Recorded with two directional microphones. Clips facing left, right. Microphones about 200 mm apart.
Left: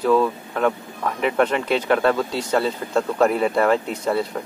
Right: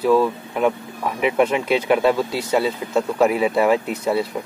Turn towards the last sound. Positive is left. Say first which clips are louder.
# right 1 dB
turn(degrees=-5)  # may be behind; listen again after turning